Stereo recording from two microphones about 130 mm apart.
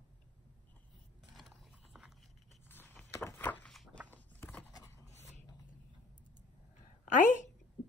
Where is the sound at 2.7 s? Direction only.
15° left (ahead or behind).